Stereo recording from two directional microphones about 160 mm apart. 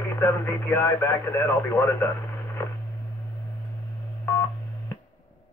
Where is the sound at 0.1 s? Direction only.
15° left (ahead or behind).